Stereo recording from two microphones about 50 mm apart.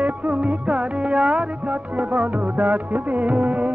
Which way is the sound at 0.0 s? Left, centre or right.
Right.